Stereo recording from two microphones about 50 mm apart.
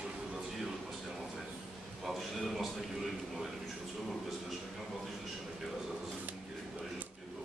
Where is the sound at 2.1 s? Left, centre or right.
Centre.